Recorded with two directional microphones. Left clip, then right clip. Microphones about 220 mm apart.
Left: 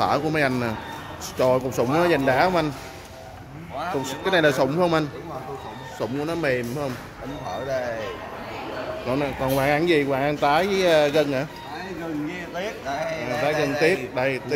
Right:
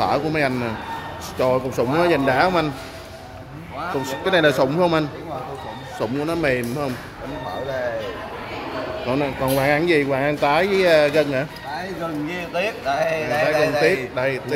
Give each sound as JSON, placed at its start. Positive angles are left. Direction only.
{"t": 0.0, "sound": "speech", "side_deg": 10}
{"t": 4.0, "sound": "speech", "side_deg": 5}
{"t": 9.1, "sound": "speech", "side_deg": 0}
{"t": 12.5, "sound": "a man's voice", "side_deg": -10}
{"t": 13.7, "sound": "speech", "side_deg": 15}